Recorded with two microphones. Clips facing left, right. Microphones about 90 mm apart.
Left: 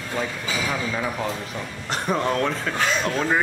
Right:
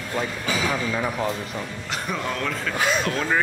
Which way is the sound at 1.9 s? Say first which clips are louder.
Left 6 dB; 35° left (ahead or behind).